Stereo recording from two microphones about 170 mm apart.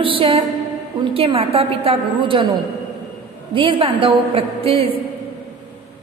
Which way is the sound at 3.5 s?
30° right (ahead or behind).